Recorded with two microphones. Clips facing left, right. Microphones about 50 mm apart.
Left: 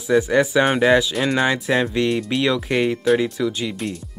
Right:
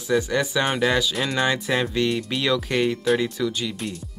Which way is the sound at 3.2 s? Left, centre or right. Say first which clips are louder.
Left 3 dB; centre.